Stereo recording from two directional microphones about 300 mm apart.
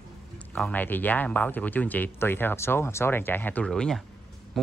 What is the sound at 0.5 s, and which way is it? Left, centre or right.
Speech, centre.